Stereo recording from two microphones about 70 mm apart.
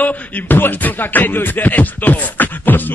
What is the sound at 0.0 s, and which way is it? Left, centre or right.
Beatboxing, left.